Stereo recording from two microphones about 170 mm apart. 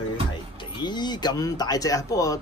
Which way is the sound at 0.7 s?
25° left (ahead or behind).